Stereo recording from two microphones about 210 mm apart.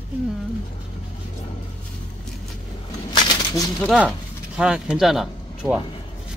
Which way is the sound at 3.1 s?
20° left (ahead or behind).